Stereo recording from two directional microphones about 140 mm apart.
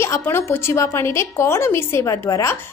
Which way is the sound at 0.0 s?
20° left (ahead or behind).